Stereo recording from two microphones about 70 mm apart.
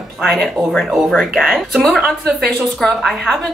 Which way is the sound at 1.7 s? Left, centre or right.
Centre.